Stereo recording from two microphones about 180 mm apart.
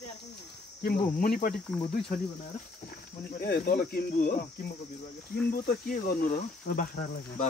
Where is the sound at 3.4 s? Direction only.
60° left (ahead or behind).